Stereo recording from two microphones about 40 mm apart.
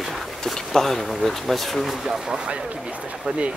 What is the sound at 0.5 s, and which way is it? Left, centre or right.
Speech, centre.